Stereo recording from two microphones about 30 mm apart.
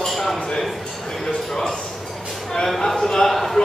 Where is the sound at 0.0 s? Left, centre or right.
Centre.